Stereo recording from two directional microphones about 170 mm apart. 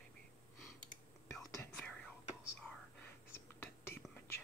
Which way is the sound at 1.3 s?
15° left (ahead or behind).